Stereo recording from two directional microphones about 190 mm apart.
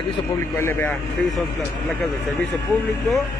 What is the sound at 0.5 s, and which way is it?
Speech, 10° left (ahead or behind).